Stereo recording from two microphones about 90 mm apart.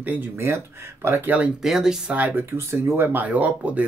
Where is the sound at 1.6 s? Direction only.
5° right (ahead or behind).